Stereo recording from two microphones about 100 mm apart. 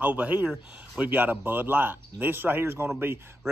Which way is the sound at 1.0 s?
20° right (ahead or behind).